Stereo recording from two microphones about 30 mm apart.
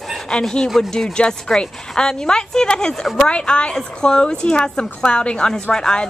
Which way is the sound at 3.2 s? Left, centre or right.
Left.